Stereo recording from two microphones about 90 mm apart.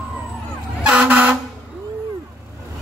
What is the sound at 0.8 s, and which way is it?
Vehicle, 15° right (ahead or behind).